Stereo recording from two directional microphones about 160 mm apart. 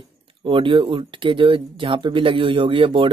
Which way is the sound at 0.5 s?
30° right (ahead or behind).